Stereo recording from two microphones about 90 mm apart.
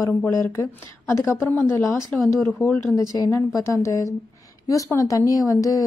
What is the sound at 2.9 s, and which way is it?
A woman's voice, 45° left (ahead or behind).